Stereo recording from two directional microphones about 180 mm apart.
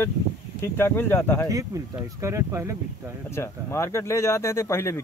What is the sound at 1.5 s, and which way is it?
Speech, 20° right (ahead or behind).